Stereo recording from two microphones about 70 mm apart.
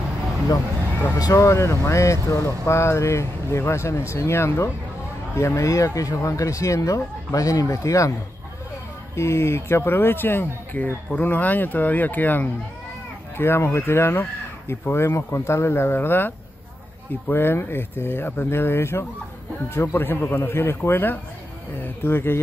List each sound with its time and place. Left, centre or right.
1.3 s speech: left
9.1 s speech: left